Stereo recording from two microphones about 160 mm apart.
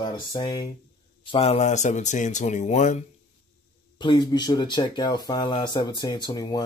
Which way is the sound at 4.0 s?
30° left (ahead or behind).